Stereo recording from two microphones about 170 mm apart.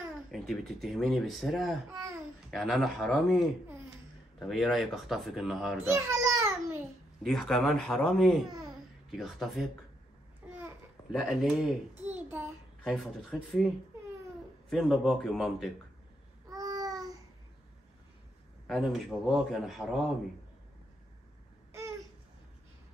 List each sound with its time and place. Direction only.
0.3 s a man's voice: centre (ahead or behind)
5.9 s babbling: 15° right (ahead or behind)
7.2 s a man's voice: centre (ahead or behind)
10.6 s babbling: centre (ahead or behind)
12.8 s a man's voice: centre (ahead or behind)
16.4 s babbling: 20° right (ahead or behind)
18.7 s a man's voice: centre (ahead or behind)